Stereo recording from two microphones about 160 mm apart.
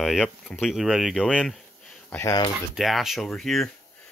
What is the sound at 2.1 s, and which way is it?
Speech, 20° left (ahead or behind).